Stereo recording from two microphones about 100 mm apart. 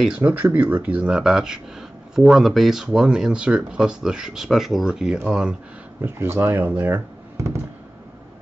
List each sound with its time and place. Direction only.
0.0 s speech: 15° right (ahead or behind)
5.9 s speech: 20° right (ahead or behind)
7.3 s fireworks: 25° right (ahead or behind)